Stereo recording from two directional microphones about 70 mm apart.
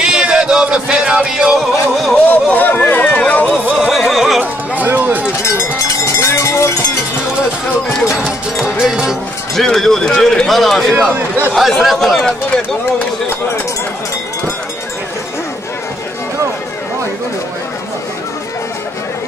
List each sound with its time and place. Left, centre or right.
0.0 s music: centre
2.2 s a sound: left
3.8 s a sound: centre
4.7 s a sound: right
5.4 s cowbell: left
8.6 s music: centre
9.6 s a man's voice: centre
11.0 s a man's voice: right
11.5 s a man's voice: centre